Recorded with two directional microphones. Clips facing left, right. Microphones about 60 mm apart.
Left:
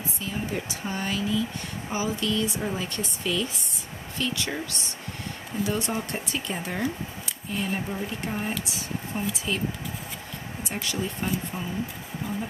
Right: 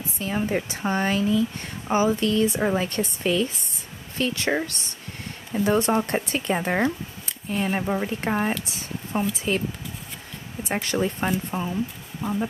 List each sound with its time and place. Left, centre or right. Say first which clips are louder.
0.2 s a woman's voice: right 7 dB; right
10.7 s speech: right 7 dB; right